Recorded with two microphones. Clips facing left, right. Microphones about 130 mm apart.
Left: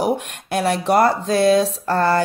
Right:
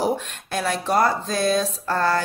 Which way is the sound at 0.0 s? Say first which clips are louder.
Left 3 dB; 65° left (ahead or behind).